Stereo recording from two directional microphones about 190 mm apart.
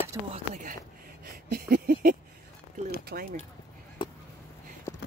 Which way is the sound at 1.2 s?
50° right (ahead or behind).